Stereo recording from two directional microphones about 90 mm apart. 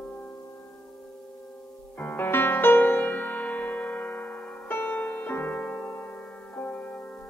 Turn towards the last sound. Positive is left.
turn(degrees=20)  # may be behind; listen again after turning